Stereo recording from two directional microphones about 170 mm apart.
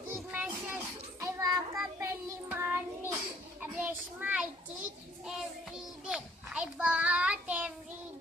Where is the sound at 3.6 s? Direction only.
10° right (ahead or behind).